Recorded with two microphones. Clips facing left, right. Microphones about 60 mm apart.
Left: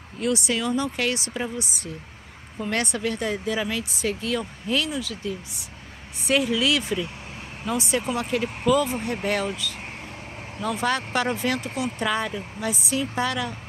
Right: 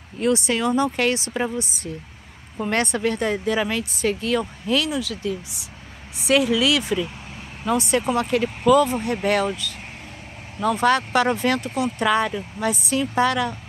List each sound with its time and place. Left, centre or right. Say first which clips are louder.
0.2 s speech: right 4 dB; right
2.6 s speech: right 4 dB; right
4.6 s speech: right 2 dB; right
7.6 s speech: right 5 dB; right
12.0 s speech: right 6 dB; right